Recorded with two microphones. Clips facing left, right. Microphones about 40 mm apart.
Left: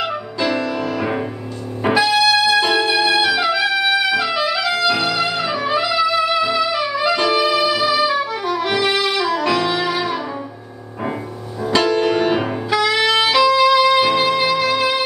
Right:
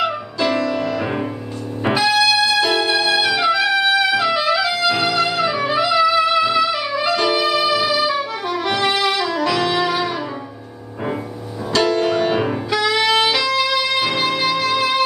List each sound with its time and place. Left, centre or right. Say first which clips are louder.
0.0 s music: right 1 dB; centre
11.8 s saxophone: right 1 dB; centre